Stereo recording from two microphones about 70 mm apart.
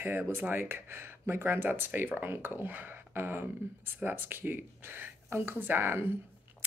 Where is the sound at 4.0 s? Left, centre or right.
Right.